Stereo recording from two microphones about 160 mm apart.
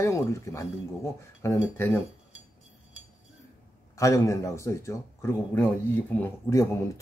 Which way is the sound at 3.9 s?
20° left (ahead or behind).